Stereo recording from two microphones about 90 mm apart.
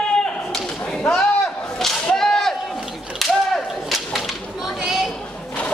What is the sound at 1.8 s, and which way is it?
Whip, 5° left (ahead or behind).